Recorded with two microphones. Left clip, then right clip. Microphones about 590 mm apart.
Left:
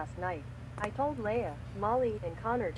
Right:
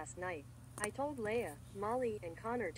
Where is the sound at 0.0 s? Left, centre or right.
Right.